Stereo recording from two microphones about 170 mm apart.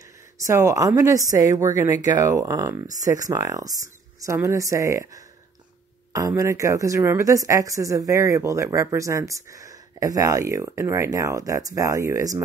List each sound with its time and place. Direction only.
0.4 s speech: 15° right (ahead or behind)